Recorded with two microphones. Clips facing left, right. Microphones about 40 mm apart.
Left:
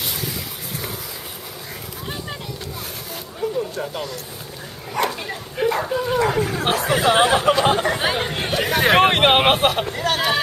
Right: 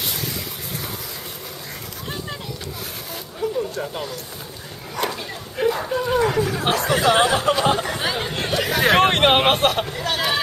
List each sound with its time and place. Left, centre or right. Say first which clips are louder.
3.3 s a sound: even; centre
5.0 s bow-wow: left 3 dB; centre
5.6 s speech: even; centre
7.8 s speech: left 4 dB; left
8.3 s speech: left 1 dB; centre
10.1 s a sound: left 1 dB; centre